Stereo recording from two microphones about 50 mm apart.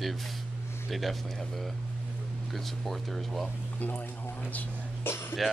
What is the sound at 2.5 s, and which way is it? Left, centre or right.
Speech, centre.